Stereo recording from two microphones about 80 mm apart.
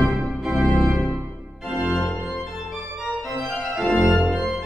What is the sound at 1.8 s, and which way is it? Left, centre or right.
Organ, centre.